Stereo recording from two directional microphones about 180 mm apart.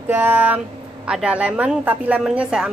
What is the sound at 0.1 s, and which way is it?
A woman's voice, 10° right (ahead or behind).